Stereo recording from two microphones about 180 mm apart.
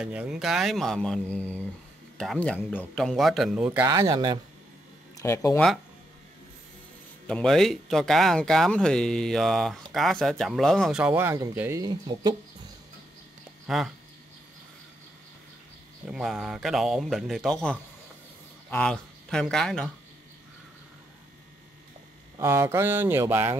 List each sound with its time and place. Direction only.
0.0 s speech: 5° right (ahead or behind)
3.9 s speech: 20° right (ahead or behind)
5.1 s speech: 15° left (ahead or behind)
7.2 s speech: 5° left (ahead or behind); by 12.4 s 25° right (ahead or behind)
13.7 s speech: centre (ahead or behind)
16.1 s a man's voice: centre (ahead or behind)
22.4 s speech: 15° right (ahead or behind)